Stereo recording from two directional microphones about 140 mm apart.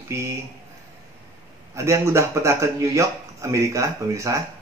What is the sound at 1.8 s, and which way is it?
Speech, 20° right (ahead or behind).